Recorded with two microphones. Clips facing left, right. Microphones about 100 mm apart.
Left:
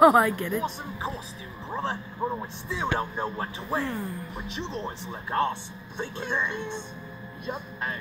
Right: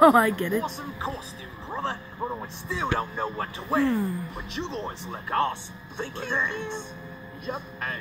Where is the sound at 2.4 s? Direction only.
20° left (ahead or behind).